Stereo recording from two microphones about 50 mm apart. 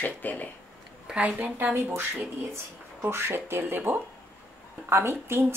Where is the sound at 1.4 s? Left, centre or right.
Right.